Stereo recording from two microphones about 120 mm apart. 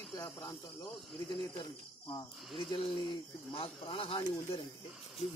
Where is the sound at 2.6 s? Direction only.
45° left (ahead or behind).